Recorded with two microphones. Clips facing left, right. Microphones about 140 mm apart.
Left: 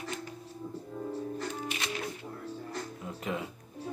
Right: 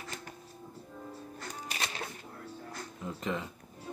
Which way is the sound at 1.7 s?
35° right (ahead or behind).